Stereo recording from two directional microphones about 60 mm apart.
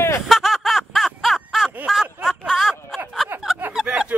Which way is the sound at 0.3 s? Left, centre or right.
Centre.